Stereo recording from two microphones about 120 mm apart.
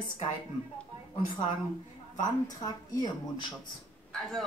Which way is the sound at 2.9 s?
35° left (ahead or behind).